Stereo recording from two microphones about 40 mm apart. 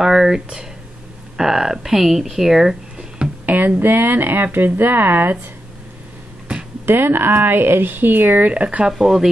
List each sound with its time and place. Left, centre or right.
0.0 s speech: centre
3.4 s speech: right
6.9 s speech: right
8.6 s speech: right
8.9 s speech: centre